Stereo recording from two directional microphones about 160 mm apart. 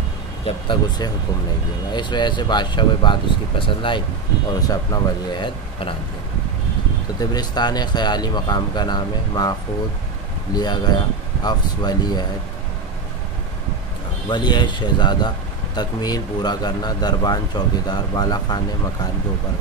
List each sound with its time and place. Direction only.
0.7 s speech: 25° left (ahead or behind)
7.2 s speech: 25° left (ahead or behind)
10.5 s speech: 25° left (ahead or behind)
14.3 s speech: 30° left (ahead or behind)